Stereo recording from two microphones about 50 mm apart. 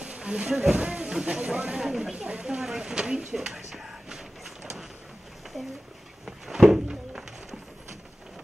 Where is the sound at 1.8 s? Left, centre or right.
Centre.